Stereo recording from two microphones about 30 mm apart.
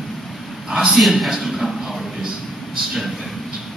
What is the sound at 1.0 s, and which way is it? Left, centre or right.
A man's voice, centre.